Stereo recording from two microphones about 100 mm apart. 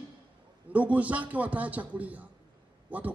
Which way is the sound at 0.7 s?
15° right (ahead or behind).